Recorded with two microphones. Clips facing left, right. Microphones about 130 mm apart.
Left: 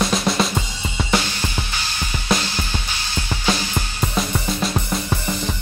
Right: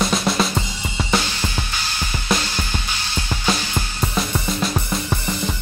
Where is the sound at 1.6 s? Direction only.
10° left (ahead or behind).